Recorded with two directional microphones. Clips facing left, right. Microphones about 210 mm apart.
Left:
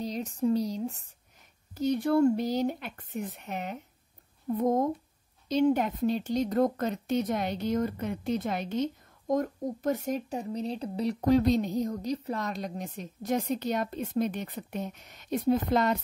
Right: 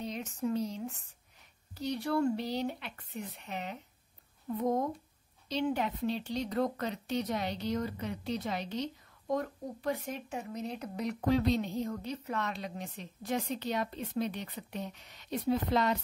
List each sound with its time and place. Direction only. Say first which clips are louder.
0.0 s speech: left 6 dB; 35° left (ahead or behind)
1.8 s speech: left 7 dB; 50° left (ahead or behind)